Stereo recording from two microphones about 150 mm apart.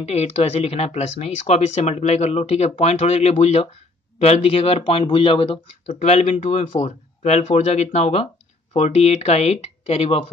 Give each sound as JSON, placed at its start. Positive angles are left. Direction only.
{"t": 0.0, "sound": "speech", "side_deg": 45}